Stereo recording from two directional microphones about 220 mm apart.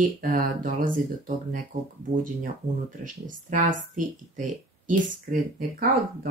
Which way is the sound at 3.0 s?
35° right (ahead or behind).